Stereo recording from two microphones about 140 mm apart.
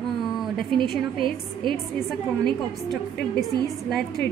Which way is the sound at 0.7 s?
35° right (ahead or behind).